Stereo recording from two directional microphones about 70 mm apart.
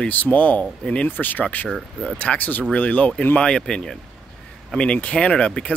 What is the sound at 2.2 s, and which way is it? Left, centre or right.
Speech, left.